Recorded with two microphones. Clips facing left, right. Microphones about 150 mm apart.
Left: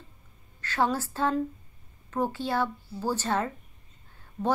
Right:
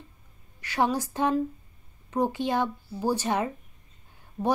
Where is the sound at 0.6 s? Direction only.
15° right (ahead or behind).